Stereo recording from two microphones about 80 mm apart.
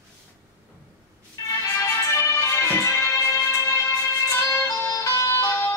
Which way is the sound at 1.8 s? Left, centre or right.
Left.